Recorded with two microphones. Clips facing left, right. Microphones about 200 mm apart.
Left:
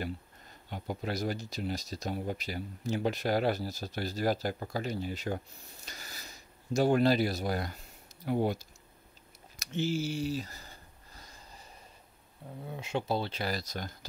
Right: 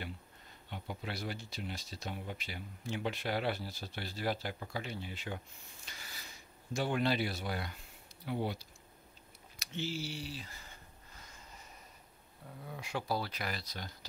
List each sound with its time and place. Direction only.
0.7 s speech: 40° left (ahead or behind)
9.6 s a sound: 45° left (ahead or behind)
12.6 s speech: 25° left (ahead or behind)
13.6 s speech: 45° left (ahead or behind)